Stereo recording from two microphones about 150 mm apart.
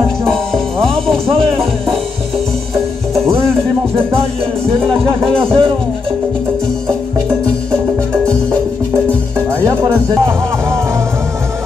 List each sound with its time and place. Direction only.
0.2 s music: 5° left (ahead or behind)
1.2 s music: 40° right (ahead or behind)
3.9 s music: 40° right (ahead or behind)
5.0 s speech: 35° right (ahead or behind)